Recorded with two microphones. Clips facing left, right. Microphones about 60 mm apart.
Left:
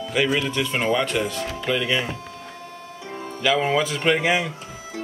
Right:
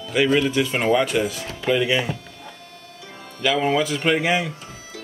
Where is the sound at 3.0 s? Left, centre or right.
Left.